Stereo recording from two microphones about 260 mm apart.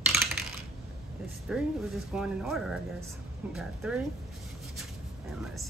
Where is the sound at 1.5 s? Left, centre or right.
Centre.